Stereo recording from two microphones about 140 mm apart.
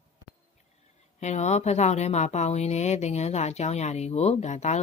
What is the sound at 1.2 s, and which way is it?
Speech, 55° left (ahead or behind).